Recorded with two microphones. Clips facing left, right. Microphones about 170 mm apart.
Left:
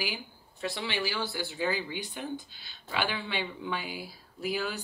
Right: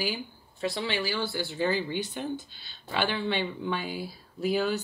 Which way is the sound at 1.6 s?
10° left (ahead or behind).